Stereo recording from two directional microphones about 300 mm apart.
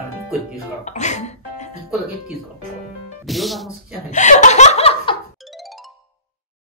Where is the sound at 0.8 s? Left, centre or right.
Left.